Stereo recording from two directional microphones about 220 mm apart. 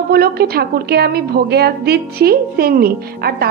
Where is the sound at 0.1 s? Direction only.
45° right (ahead or behind).